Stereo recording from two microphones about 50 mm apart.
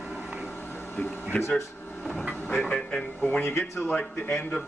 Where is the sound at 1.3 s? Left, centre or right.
Left.